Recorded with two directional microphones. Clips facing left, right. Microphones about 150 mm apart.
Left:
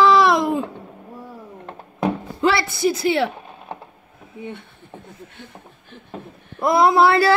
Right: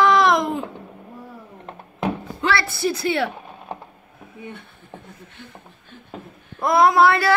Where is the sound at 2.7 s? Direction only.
Centre (ahead or behind).